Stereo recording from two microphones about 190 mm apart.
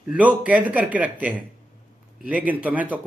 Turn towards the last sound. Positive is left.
turn(degrees=-10)  # may be behind; listen again after turning